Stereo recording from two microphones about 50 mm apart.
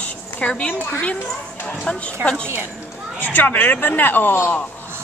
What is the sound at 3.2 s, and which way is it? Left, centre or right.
Speech, left.